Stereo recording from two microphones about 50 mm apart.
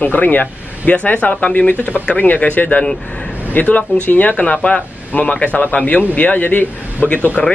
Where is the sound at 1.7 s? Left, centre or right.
Right.